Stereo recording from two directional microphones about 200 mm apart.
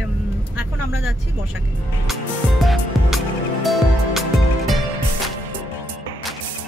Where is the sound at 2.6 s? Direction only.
Centre (ahead or behind).